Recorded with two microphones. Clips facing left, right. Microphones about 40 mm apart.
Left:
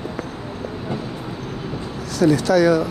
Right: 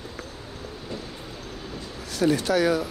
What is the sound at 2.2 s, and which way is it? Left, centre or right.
Speech, left.